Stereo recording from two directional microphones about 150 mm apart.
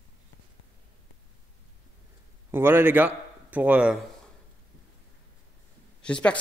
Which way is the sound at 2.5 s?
15° right (ahead or behind).